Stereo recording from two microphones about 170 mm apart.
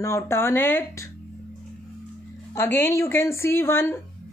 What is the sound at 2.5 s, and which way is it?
A woman's voice, 15° left (ahead or behind).